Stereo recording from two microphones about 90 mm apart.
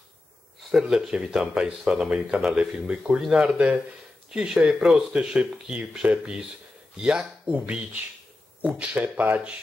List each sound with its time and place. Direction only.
0.7 s speech: 5° right (ahead or behind)